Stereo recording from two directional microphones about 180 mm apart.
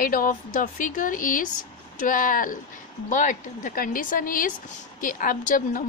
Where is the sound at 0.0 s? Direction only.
50° left (ahead or behind).